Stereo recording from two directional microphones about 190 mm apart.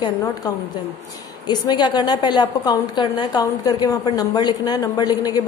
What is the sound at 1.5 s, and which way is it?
A woman's voice, 25° left (ahead or behind).